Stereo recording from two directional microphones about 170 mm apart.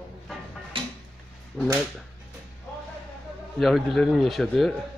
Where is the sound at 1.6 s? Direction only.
10° left (ahead or behind).